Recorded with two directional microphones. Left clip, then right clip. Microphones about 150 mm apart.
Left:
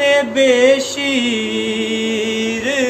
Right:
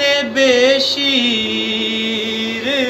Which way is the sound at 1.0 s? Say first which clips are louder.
Right 2 dB; 30° left (ahead or behind).